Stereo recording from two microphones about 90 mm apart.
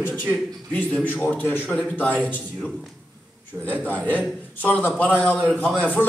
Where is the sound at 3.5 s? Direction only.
20° right (ahead or behind).